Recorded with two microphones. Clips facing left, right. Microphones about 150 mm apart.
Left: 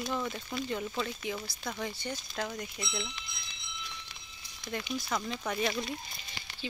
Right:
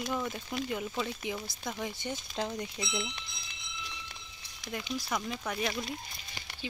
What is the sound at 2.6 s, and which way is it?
Fowl, 25° right (ahead or behind).